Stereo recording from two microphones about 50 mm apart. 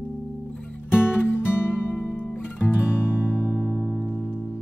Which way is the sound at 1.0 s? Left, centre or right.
Left.